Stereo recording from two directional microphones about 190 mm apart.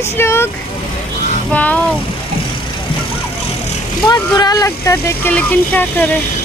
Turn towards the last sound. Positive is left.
turn(degrees=10)  # may be behind; listen again after turning